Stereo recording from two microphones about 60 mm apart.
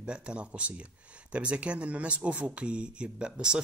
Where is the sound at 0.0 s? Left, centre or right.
Centre.